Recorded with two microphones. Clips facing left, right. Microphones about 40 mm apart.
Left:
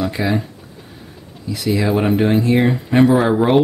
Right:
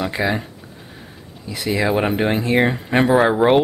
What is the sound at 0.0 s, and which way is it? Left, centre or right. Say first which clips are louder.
Speech: left 2 dB; centre.